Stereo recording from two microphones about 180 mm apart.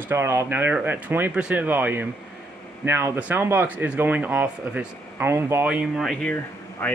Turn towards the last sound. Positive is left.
turn(degrees=10)  # may be behind; listen again after turning